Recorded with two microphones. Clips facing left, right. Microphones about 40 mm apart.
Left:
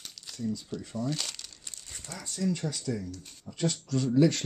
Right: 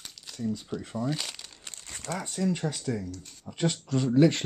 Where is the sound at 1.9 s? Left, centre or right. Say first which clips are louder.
Right 8 dB; right.